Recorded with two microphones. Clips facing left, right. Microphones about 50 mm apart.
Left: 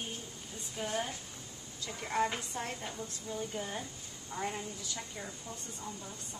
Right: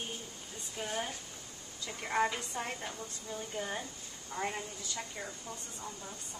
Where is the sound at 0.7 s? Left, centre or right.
Centre.